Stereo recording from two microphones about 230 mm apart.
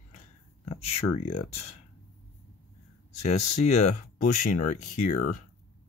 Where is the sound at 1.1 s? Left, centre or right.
Left.